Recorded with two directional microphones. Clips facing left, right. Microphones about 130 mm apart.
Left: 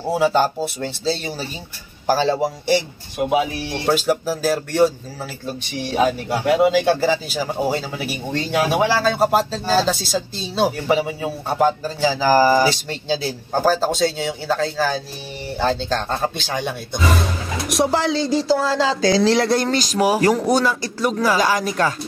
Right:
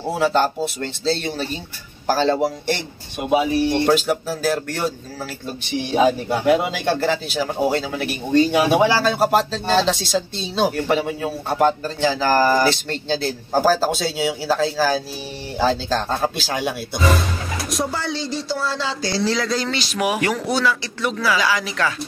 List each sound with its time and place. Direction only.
0.2 s speech: 5° left (ahead or behind)
5.9 s speech: centre (ahead or behind)
13.5 s speech: 5° right (ahead or behind)
17.6 s speech: 85° left; by 21.9 s 45° left (ahead or behind)